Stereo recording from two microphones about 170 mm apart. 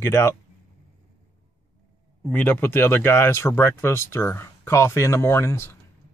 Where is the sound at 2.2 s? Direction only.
10° left (ahead or behind).